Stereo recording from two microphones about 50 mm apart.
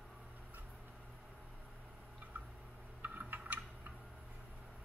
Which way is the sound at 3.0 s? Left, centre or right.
Right.